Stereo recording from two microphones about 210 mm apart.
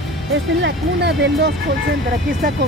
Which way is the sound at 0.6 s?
55° right (ahead or behind).